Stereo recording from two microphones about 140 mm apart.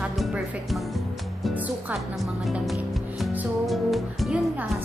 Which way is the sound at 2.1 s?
Centre (ahead or behind).